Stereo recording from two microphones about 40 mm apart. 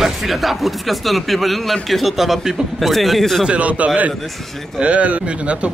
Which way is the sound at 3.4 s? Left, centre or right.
Right.